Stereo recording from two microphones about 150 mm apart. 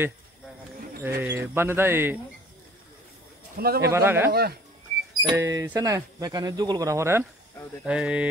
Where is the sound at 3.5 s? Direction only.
90° right.